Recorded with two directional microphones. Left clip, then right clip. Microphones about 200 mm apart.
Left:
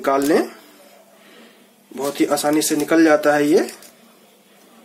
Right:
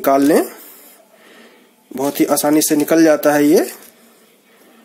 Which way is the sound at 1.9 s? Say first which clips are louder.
Right 3 dB; 50° right (ahead or behind).